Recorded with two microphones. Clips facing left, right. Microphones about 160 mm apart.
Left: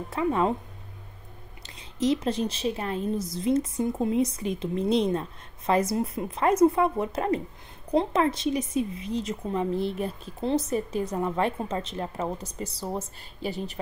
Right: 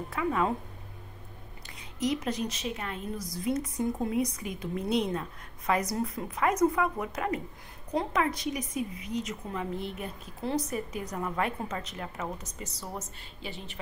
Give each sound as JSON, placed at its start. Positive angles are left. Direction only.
{"t": 0.1, "sound": "a woman's voice", "side_deg": 30}
{"t": 1.8, "sound": "a woman's voice", "side_deg": 30}